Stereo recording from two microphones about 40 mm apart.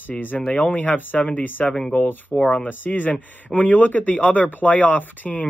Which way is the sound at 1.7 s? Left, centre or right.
Left.